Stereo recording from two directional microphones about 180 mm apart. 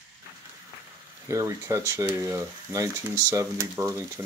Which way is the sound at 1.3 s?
15° right (ahead or behind).